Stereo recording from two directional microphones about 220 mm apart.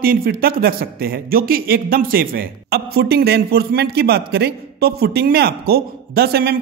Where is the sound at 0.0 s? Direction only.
40° right (ahead or behind).